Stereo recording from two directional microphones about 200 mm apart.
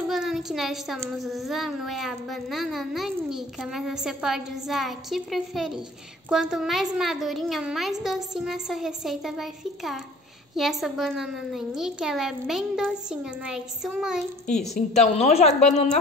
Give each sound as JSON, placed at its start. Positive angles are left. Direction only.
{"t": 0.1, "sound": "child singing", "side_deg": 0}
{"t": 1.1, "sound": "a child's voice", "side_deg": 0}
{"t": 15.0, "sound": "a woman's voice", "side_deg": 30}